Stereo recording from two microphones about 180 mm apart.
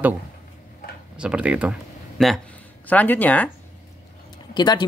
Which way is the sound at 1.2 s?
5° right (ahead or behind).